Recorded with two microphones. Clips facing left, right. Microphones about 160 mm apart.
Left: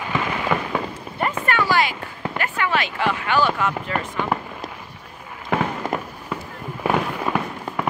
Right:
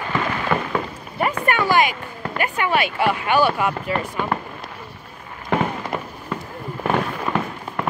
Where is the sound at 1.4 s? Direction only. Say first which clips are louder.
Right 2 dB; 15° right (ahead or behind).